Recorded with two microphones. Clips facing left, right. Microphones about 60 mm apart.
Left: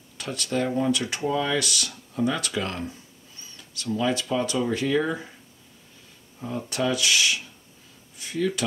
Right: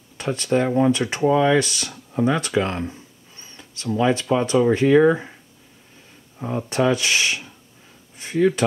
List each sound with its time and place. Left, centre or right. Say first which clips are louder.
0.2 s speech: right 6 dB; right
6.4 s speech: right 6 dB; right